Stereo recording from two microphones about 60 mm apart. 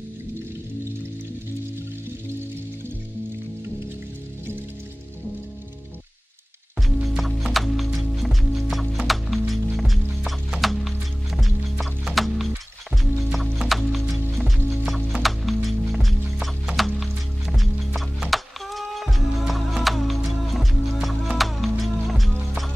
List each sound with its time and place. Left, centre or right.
7.1 s music: centre